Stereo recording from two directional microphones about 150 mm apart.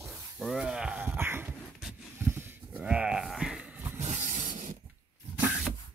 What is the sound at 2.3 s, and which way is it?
Sheep, 15° right (ahead or behind).